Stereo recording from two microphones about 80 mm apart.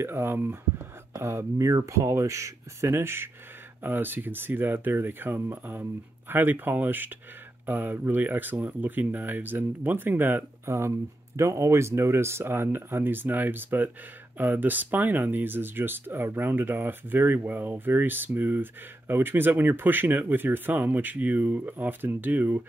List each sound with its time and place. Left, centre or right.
0.0 s speech: right